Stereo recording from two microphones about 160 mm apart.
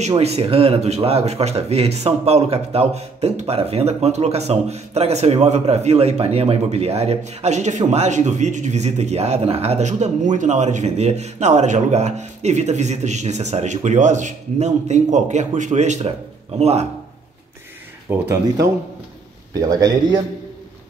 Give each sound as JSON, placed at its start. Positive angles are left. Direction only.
{"t": 0.2, "sound": "a man's voice", "side_deg": -40}
{"t": 18.1, "sound": "speech", "side_deg": -15}
{"t": 19.7, "sound": "a man's voice", "side_deg": -20}